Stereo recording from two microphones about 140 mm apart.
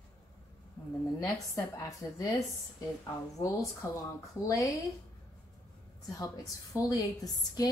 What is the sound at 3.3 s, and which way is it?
A woman's voice, 25° left (ahead or behind).